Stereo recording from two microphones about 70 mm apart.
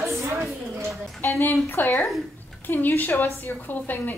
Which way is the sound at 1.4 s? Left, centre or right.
Left.